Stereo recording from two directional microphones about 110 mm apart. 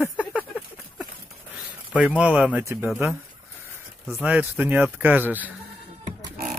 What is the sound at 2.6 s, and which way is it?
Speech, 20° right (ahead or behind).